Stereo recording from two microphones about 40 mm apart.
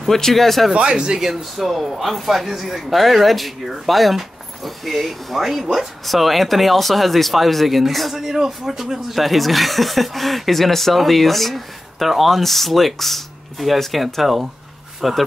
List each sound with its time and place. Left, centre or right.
0.1 s speech: centre
0.7 s speech: right
1.3 s speech: centre